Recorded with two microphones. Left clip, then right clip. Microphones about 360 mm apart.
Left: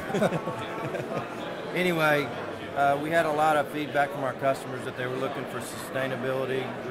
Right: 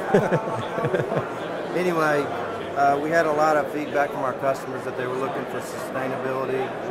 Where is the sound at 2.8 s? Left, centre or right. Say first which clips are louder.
Right 4 dB; left.